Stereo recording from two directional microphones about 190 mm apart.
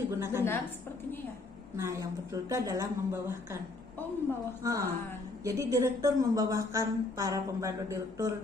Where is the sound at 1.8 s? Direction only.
15° right (ahead or behind).